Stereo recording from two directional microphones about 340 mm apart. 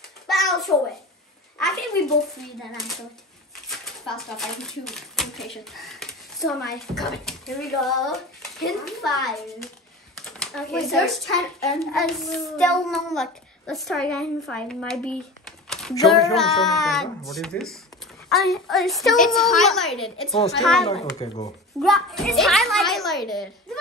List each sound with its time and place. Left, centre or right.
0.3 s hands: centre
3.6 s speech: centre
20.8 s speech: centre
21.8 s speech: centre